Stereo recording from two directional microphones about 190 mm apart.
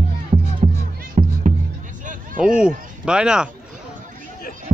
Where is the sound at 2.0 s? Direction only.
45° right (ahead or behind).